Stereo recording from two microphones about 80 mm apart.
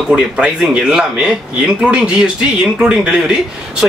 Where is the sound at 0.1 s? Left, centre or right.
Centre.